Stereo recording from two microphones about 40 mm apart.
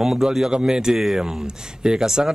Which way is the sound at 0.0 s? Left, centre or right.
Centre.